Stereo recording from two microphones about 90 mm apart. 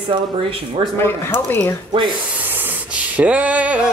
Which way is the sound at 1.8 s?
60° right (ahead or behind).